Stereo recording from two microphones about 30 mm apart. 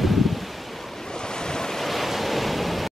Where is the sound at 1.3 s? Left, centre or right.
Left.